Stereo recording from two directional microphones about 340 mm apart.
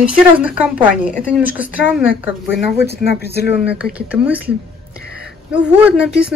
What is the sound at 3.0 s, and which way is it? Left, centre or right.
Speech, left.